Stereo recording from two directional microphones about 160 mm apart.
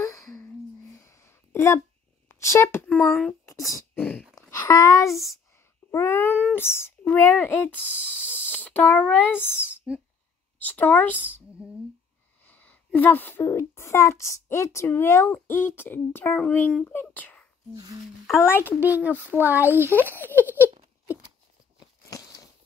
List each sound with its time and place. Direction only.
0.0 s a sound: 20° left (ahead or behind)
2.2 s a woman's voice: 20° left (ahead or behind)
3.4 s a sound: 20° left (ahead or behind)
4.4 s speech: 20° left (ahead or behind)
5.9 s a sound: 15° left (ahead or behind)
6.5 s a woman's voice: 15° left (ahead or behind)
9.9 s speech: 5° right (ahead or behind)
10.6 s a woman's voice: 10° left (ahead or behind)
12.4 s a woman's voice: 10° left (ahead or behind)
17.7 s speech: 25° right (ahead or behind)
18.4 s a woman's voice: 15° left (ahead or behind)
18.8 s speech: 10° right (ahead or behind)
21.7 s a sound: 20° left (ahead or behind)